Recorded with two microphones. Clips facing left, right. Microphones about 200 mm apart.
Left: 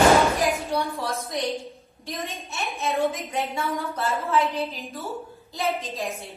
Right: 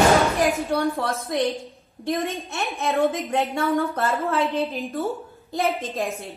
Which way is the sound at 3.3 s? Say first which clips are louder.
Right 5 dB; 50° right (ahead or behind).